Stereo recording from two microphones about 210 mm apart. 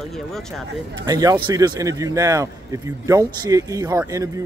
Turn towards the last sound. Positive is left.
turn(degrees=-15)  # may be behind; listen again after turning